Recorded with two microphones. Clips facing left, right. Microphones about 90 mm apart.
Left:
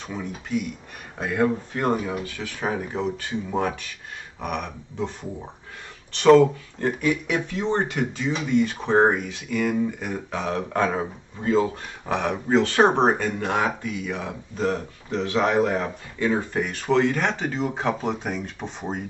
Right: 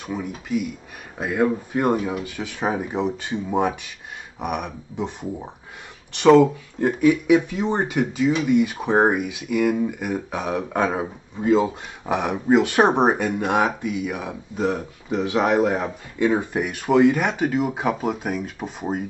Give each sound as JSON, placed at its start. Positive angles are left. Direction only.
{"t": 0.0, "sound": "speech", "side_deg": -10}